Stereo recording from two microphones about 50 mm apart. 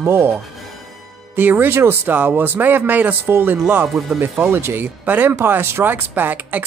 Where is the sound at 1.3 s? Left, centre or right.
Right.